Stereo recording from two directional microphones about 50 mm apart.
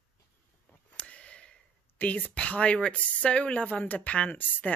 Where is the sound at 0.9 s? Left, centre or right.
Left.